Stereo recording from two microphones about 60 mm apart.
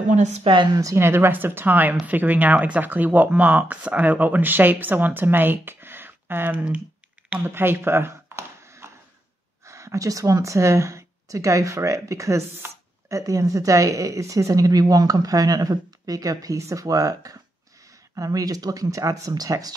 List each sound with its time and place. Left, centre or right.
0.9 s speech: right
7.4 s a sound: right
9.7 s speech: right